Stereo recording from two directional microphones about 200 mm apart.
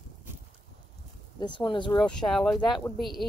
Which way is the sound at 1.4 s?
25° left (ahead or behind).